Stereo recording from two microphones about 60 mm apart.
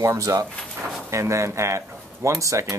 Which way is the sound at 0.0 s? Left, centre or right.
Right.